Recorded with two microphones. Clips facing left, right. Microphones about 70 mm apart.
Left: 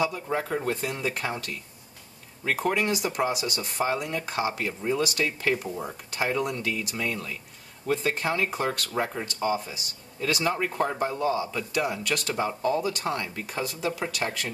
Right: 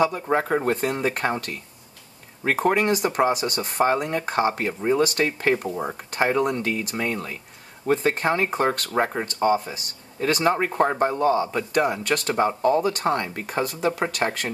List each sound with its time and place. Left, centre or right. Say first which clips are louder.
0.0 s speech: right 6 dB; right